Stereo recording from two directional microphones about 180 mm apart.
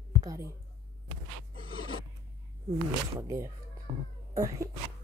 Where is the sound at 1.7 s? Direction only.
25° left (ahead or behind).